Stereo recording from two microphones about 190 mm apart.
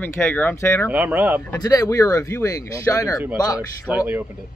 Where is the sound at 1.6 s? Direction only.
20° left (ahead or behind).